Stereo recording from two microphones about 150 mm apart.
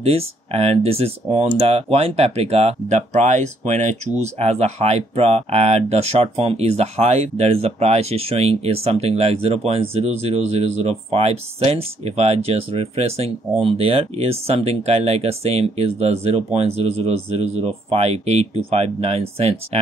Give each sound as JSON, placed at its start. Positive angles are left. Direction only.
{"t": 0.0, "sound": "speech", "side_deg": -40}